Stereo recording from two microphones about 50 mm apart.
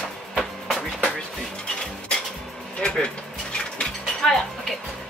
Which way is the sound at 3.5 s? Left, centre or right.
Centre.